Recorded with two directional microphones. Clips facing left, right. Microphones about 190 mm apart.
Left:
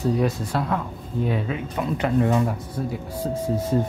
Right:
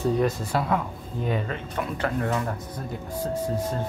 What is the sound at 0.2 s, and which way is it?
Speech, centre (ahead or behind).